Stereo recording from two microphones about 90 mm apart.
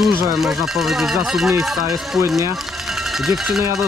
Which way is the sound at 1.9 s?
30° right (ahead or behind).